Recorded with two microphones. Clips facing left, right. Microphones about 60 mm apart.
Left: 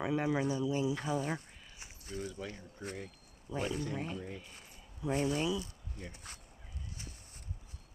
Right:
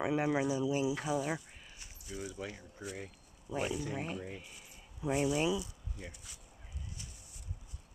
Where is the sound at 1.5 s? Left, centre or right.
Centre.